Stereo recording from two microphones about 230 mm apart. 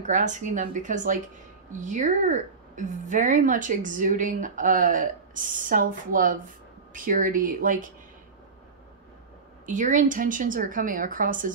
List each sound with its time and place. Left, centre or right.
0.0 s speech: right
9.7 s speech: right